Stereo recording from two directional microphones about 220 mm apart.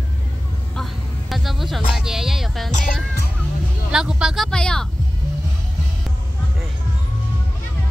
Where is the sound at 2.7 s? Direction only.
40° left (ahead or behind).